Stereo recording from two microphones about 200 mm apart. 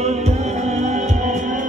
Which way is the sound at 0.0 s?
35° right (ahead or behind).